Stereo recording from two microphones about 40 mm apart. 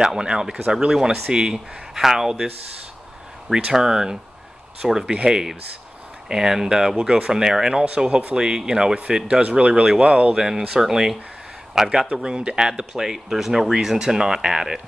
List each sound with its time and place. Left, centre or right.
0.0 s speech: centre
3.7 s speech: centre
5.1 s speech: right
6.2 s speech: centre
7.7 s speech: right
10.3 s speech: centre
12.1 s speech: right
12.9 s speech: centre